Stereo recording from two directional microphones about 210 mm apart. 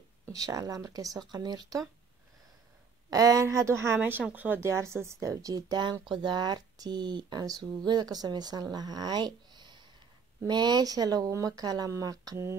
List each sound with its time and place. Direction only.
0.3 s speech: 15° right (ahead or behind)
3.1 s a woman's voice: 15° right (ahead or behind)